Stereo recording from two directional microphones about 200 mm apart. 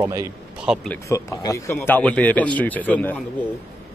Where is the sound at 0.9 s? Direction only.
15° left (ahead or behind).